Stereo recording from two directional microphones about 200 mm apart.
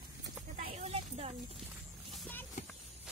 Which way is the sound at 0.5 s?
35° right (ahead or behind).